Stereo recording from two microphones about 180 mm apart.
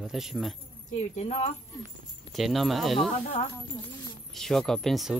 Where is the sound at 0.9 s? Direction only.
40° left (ahead or behind).